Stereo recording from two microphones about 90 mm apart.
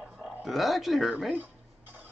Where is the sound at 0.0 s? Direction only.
10° right (ahead or behind).